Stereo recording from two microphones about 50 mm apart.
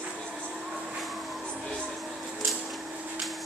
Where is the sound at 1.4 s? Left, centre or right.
Centre.